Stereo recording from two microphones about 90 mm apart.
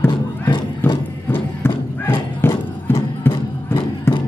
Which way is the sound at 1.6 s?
25° left (ahead or behind).